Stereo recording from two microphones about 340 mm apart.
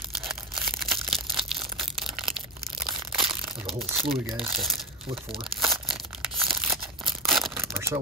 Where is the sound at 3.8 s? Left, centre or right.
Centre.